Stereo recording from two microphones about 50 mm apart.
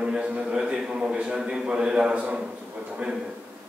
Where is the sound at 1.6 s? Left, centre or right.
Centre.